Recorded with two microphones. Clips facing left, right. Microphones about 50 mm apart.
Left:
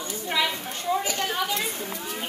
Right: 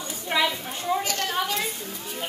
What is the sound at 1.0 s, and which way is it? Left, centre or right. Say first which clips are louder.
Speech: even; centre.